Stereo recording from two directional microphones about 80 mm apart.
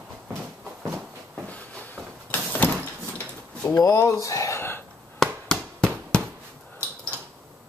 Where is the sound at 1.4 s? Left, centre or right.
Centre.